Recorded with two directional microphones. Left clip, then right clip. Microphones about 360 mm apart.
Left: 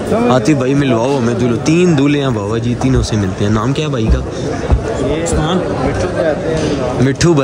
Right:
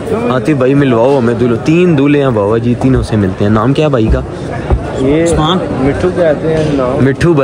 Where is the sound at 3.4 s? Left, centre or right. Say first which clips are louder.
Right 5 dB; centre.